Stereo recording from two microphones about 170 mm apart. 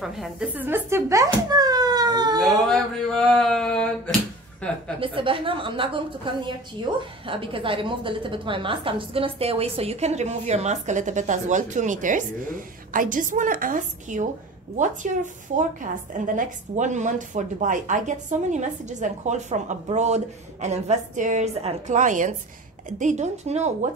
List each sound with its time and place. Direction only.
0.0 s speech: centre (ahead or behind); by 2.3 s 25° right (ahead or behind)
2.4 s speech: centre (ahead or behind)
5.0 s a woman's voice: 30° right (ahead or behind)